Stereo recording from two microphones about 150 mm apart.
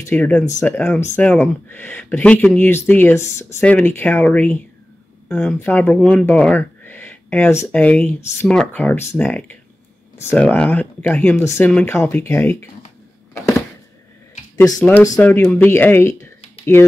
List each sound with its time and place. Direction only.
0.1 s speech: 10° left (ahead or behind)
0.5 s speech: 20° left (ahead or behind)
14.8 s speech: 10° left (ahead or behind)